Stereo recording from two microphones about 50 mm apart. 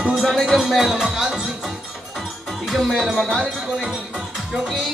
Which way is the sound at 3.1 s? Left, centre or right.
Centre.